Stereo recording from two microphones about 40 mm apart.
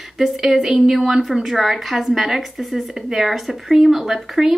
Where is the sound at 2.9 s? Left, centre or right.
Centre.